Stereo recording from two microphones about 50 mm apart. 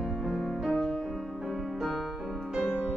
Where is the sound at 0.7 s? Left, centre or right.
Centre.